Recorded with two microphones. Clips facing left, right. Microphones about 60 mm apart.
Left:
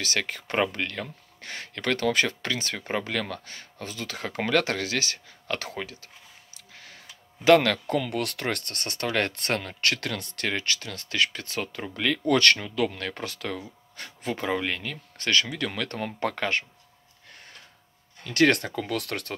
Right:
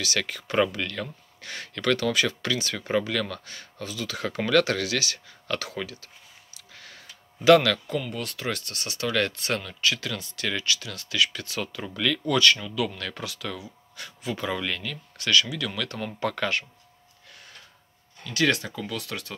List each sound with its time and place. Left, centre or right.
0.2 s speech: left
7.4 s speech: left
7.8 s speech: left
9.3 s speech: left
12.4 s speech: left
15.1 s speech: left
18.2 s speech: left